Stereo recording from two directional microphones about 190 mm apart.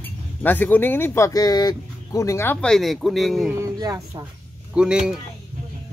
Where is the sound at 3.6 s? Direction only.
20° right (ahead or behind).